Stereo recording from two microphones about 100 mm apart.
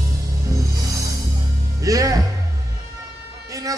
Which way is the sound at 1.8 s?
35° right (ahead or behind).